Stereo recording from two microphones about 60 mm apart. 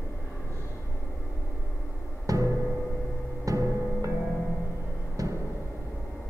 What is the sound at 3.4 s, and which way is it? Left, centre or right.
Music, right.